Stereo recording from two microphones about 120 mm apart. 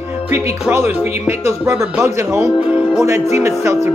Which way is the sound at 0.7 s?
20° right (ahead or behind).